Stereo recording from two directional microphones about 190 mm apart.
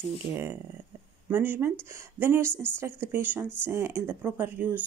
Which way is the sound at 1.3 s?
10° right (ahead or behind).